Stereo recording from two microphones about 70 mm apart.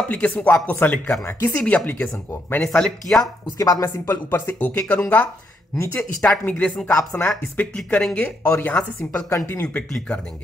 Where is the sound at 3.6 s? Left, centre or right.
Left.